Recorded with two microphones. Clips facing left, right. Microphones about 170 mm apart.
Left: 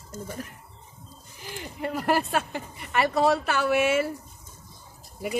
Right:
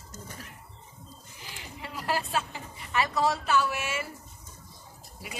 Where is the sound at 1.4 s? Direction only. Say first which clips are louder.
Left 11 dB; 50° left (ahead or behind).